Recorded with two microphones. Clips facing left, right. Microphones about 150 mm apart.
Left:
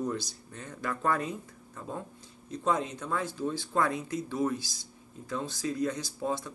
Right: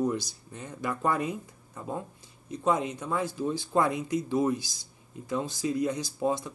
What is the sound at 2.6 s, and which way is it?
Speech, 10° right (ahead or behind).